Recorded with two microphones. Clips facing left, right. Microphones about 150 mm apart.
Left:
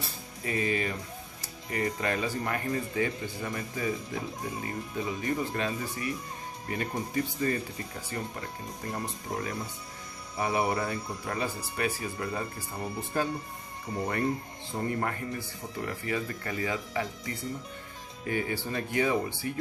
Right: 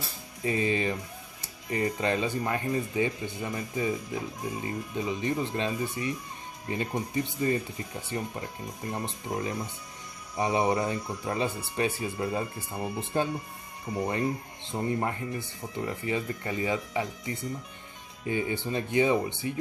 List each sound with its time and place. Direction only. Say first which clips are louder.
0.4 s speech: right 3 dB; 25° right (ahead or behind)